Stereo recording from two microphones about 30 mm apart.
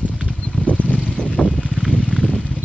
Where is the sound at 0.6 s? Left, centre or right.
Left.